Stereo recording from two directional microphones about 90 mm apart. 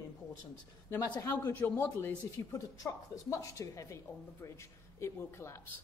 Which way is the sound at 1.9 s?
30° left (ahead or behind).